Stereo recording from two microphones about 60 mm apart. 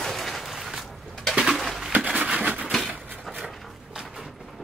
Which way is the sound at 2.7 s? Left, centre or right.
Centre.